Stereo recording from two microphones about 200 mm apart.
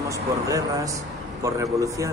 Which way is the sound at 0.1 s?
15° right (ahead or behind).